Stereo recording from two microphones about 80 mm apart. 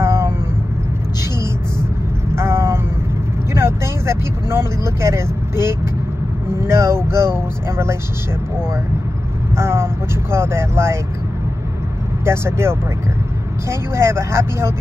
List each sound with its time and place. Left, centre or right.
0.0 s vehicle: right
2.3 s vehicle: right
9.6 s speech: right
12.3 s speech: right